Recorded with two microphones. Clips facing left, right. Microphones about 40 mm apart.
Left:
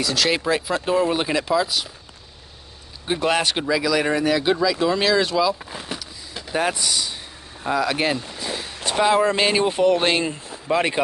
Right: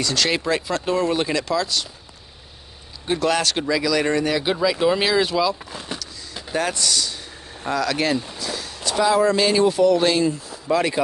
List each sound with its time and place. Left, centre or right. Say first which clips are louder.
0.0 s speech: left 1 dB; centre
3.2 s speech: even; left; by 4.6 s centre
4.6 s speech: right 1 dB; centre
5.7 s vehicle: even; centre
7.6 s speech: left 1 dB; centre